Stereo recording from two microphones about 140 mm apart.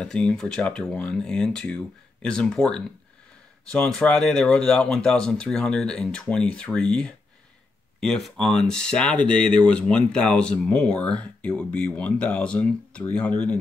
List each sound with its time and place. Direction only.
0.0 s speech: 5° left (ahead or behind)